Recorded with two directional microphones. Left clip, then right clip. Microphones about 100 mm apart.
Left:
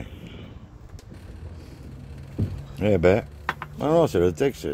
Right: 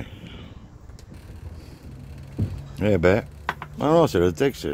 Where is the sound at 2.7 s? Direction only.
25° right (ahead or behind).